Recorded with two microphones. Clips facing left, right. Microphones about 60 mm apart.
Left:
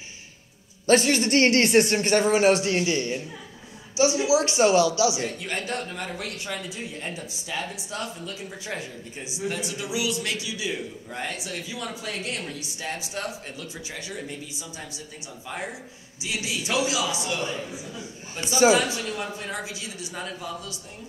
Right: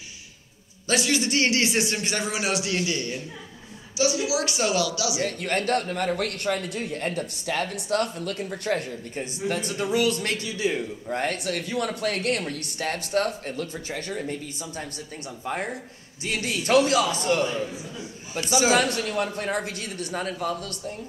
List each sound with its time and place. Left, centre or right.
0.8 s speech: left
5.2 s a man's voice: right
11.2 s a man's voice: right
16.2 s a man's voice: right
18.7 s a man's voice: right